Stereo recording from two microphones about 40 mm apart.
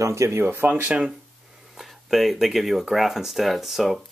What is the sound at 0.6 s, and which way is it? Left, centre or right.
Speech, right.